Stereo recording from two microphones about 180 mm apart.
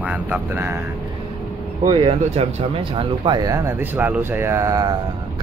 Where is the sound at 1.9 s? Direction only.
30° right (ahead or behind).